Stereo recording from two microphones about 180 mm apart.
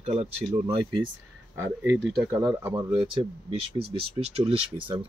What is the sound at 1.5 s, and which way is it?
Speech, 15° right (ahead or behind).